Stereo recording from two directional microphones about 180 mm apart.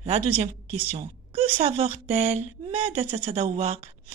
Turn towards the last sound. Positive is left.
turn(degrees=-35)  # may be behind; listen again after turning